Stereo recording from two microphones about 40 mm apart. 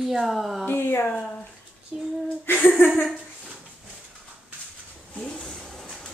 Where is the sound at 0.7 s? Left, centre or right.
Left.